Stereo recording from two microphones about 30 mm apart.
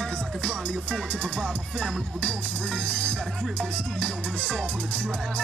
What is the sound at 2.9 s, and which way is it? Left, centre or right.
Speech, left.